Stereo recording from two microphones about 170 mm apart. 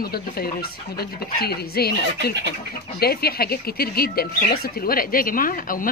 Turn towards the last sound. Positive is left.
turn(degrees=55)  # may be behind; listen again after turning